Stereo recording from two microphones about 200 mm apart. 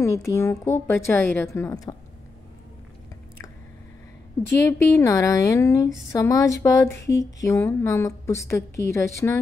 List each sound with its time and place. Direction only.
0.0 s a woman's voice: 15° left (ahead or behind)
4.5 s a woman's voice: 10° left (ahead or behind)